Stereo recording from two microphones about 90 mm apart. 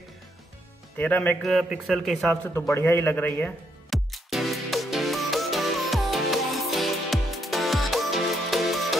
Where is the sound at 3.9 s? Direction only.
Centre (ahead or behind).